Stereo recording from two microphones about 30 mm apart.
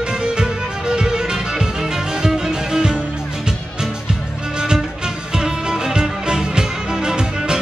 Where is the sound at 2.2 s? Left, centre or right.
Centre.